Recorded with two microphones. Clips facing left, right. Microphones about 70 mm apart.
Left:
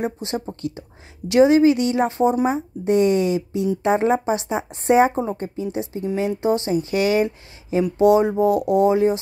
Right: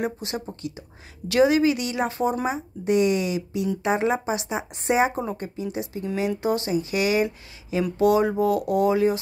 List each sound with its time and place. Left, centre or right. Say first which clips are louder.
0.0 s speech: left 3 dB; left